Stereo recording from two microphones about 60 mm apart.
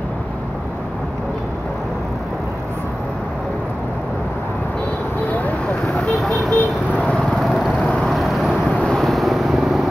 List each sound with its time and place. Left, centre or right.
6.1 s vehicle: centre
6.9 s vehicle: centre
7.2 s vehicle: centre
8.7 s vehicle: centre
9.0 s vehicle: centre